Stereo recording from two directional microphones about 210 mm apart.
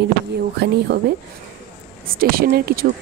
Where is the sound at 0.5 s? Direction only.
50° right (ahead or behind).